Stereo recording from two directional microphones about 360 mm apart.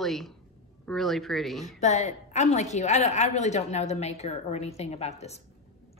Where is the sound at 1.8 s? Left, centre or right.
Centre.